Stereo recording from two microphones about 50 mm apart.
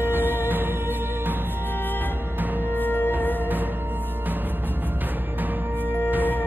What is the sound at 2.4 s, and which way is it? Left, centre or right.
Music, right.